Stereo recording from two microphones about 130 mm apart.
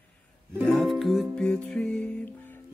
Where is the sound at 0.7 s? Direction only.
Centre (ahead or behind).